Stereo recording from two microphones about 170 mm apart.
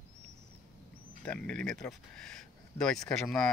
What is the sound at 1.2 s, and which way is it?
Speech, 5° left (ahead or behind).